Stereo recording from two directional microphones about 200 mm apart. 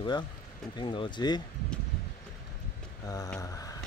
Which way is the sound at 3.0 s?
15° left (ahead or behind).